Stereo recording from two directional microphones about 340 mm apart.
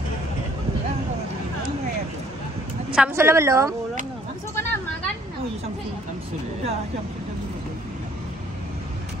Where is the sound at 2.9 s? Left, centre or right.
Centre.